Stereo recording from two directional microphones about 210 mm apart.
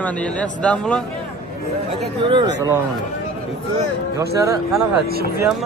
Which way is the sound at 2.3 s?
20° right (ahead or behind).